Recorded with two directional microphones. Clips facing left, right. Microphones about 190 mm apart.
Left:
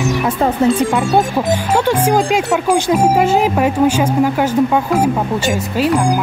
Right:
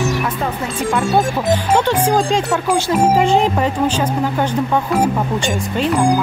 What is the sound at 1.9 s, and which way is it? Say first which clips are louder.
A woman's voice: left 2 dB; 10° left (ahead or behind).